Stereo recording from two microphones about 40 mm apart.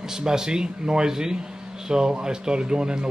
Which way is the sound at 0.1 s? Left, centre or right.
Centre.